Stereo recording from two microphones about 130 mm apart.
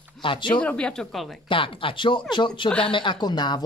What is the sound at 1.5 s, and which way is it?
Speech, 40° left (ahead or behind).